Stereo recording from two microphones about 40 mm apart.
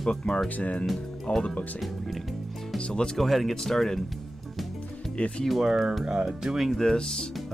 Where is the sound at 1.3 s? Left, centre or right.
Left.